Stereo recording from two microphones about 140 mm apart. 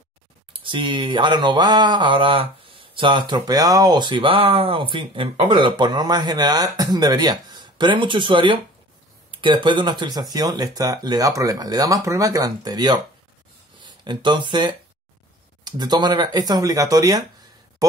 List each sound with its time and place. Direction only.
0.5 s speech: 35° right (ahead or behind)